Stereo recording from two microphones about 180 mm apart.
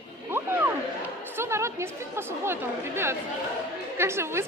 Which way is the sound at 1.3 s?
15° right (ahead or behind).